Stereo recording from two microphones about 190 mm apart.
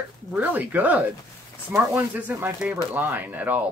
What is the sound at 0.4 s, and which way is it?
Speech, 10° right (ahead or behind).